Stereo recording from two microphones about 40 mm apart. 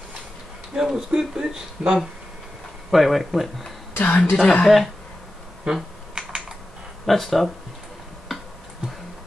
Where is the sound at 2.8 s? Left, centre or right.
Centre.